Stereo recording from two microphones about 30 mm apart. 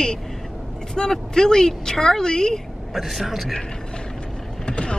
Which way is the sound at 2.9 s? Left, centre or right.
Centre.